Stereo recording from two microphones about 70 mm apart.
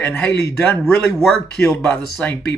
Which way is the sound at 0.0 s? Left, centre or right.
Left.